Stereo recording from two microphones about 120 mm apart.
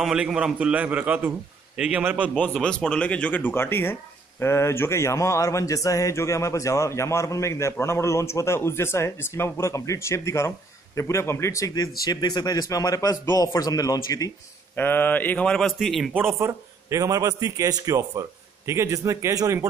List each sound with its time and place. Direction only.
0.0 s a man's voice: 5° right (ahead or behind)
2.5 s speech: 5° left (ahead or behind); by 14.3 s 30° left (ahead or behind)
14.8 s speech: 15° left (ahead or behind); by 16.1 s centre (ahead or behind)
16.3 s a man's voice: 25° right (ahead or behind)